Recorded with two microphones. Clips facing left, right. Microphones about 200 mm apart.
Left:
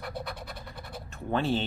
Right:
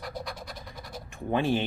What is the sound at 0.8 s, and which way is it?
Scratch, 10° right (ahead or behind).